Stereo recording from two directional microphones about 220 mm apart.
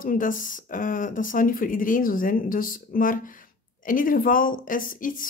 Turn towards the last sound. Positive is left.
turn(degrees=40)  # may be behind; listen again after turning